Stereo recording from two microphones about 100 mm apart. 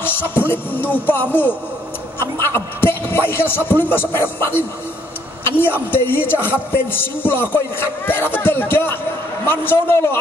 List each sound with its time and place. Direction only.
0.0 s a woman's voice: 20° left (ahead or behind)